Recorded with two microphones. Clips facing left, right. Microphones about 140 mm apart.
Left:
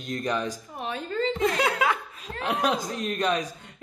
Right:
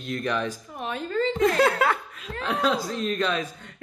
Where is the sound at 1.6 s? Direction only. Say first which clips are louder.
Right 3 dB; 15° left (ahead or behind).